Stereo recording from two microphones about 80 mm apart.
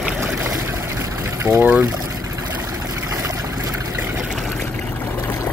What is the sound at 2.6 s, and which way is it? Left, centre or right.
Trickle, right.